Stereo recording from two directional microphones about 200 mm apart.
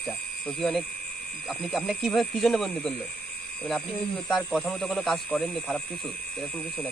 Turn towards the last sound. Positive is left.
turn(degrees=5)  # may be behind; listen again after turning